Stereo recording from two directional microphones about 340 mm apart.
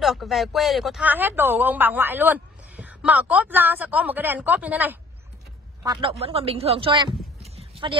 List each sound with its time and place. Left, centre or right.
0.0 s speech: centre
7.5 s clip-clop: centre